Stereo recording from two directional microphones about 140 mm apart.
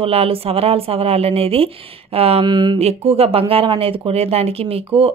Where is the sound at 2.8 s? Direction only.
45° right (ahead or behind).